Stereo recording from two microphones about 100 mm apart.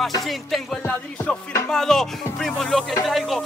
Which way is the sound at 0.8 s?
15° left (ahead or behind).